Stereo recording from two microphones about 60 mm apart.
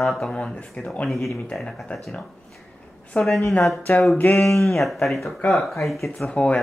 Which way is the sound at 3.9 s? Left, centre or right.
Left.